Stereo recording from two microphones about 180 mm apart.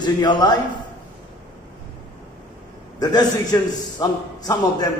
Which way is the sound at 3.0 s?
20° left (ahead or behind).